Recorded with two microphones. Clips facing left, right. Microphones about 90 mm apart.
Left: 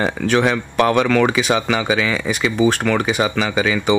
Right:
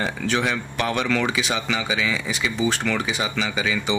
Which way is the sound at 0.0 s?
55° left (ahead or behind).